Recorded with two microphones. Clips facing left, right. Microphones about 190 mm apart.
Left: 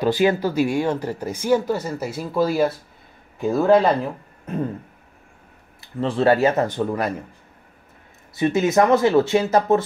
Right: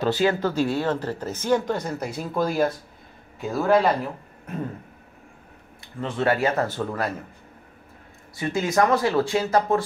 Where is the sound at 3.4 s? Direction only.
20° left (ahead or behind).